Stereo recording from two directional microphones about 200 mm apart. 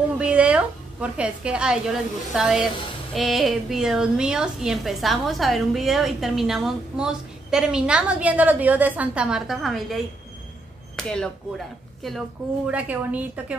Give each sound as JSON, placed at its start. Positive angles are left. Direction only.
{"t": 0.2, "sound": "a woman's voice", "side_deg": -5}
{"t": 11.0, "sound": "a woman's voice", "side_deg": 5}